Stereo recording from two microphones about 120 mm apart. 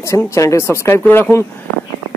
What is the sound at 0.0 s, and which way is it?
Speech, 25° left (ahead or behind).